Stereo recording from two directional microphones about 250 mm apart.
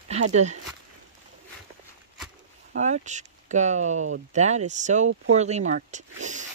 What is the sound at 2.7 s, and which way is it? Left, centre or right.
Speech, right.